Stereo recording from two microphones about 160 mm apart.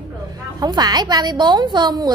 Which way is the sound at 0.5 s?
25° right (ahead or behind).